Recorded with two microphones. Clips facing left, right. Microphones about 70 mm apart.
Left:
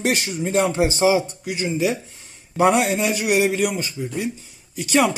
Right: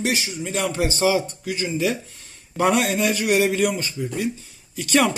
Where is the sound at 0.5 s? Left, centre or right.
Left.